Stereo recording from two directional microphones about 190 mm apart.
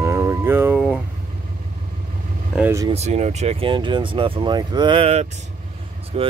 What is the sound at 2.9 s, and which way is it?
Speech, 35° right (ahead or behind).